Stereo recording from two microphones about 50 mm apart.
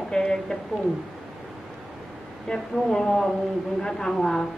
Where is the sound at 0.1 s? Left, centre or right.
Centre.